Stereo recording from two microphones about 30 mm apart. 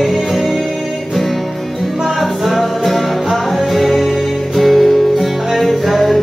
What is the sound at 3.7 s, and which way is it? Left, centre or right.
Music, centre.